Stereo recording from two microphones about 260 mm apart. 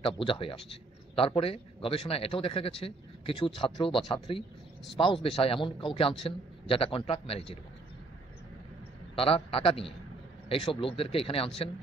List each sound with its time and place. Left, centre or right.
0.0 s a man's voice: left
9.2 s a man's voice: left